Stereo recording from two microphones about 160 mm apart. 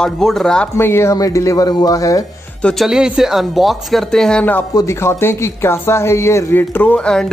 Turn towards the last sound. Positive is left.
turn(degrees=5)  # may be behind; listen again after turning